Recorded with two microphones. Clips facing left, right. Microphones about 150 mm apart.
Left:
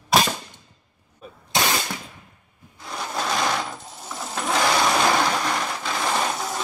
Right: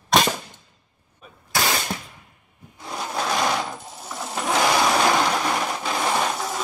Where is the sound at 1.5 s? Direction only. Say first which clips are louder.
Left 1 dB; 20° left (ahead or behind).